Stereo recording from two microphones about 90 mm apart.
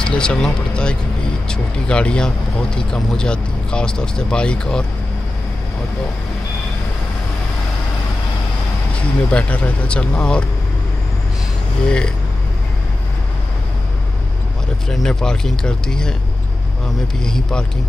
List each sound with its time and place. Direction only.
0.0 s speech: 10° left (ahead or behind)
9.3 s speech: 15° left (ahead or behind)
11.8 s speech: 10° left (ahead or behind)
14.9 s speech: 5° left (ahead or behind)
17.2 s speech: 10° left (ahead or behind)